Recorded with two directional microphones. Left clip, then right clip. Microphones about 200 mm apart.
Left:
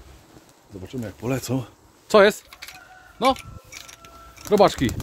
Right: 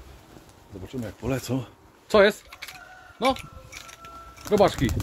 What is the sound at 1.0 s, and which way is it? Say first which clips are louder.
Speech: left 2 dB; 40° left (ahead or behind).